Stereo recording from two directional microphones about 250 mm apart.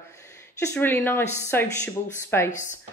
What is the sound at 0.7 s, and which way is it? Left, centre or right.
Speech, centre.